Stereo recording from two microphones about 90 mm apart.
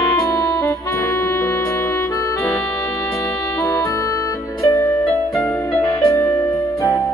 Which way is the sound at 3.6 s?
35° left (ahead or behind).